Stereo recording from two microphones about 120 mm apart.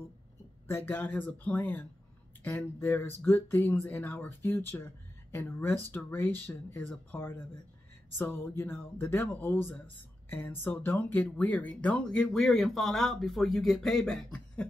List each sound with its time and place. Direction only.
0.7 s speech: 20° left (ahead or behind)